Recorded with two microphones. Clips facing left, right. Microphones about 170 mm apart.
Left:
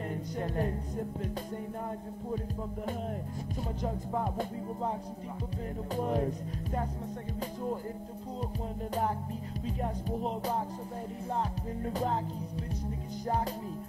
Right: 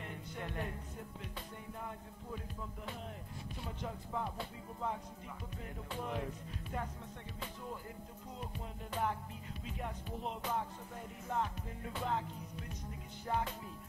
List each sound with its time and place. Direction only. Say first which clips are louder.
0.1 s speech: left 9 dB; 40° left (ahead or behind)
3.8 s music: left 7 dB; 45° left (ahead or behind)
5.9 s music: left 10 dB; 40° left (ahead or behind)
9.7 s music: left 9 dB; 40° left (ahead or behind)